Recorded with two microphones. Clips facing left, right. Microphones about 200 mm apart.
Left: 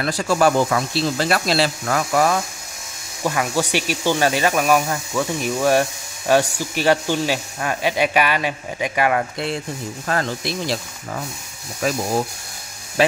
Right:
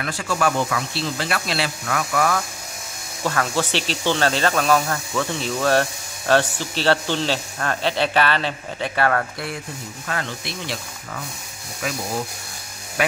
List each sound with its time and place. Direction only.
0.0 s speech: 35° left (ahead or behind)
3.3 s speech: 10° left (ahead or behind)
10.0 s speech: 40° left (ahead or behind)